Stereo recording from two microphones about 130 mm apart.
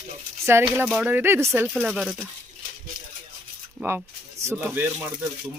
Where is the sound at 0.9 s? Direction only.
10° right (ahead or behind).